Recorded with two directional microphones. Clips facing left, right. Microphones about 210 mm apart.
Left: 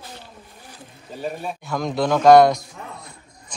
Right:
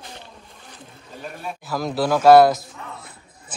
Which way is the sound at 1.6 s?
5° right (ahead or behind).